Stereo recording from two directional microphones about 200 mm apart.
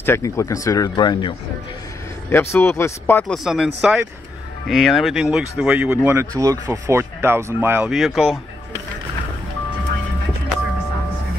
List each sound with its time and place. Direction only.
0.0 s speech: 15° left (ahead or behind)
2.5 s speech: 10° left (ahead or behind)
3.4 s speech: 5° right (ahead or behind)